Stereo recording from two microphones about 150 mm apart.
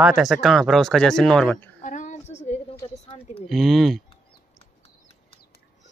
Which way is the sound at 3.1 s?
50° left (ahead or behind).